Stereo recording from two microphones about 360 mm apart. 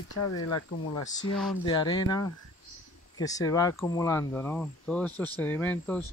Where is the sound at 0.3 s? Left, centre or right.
Left.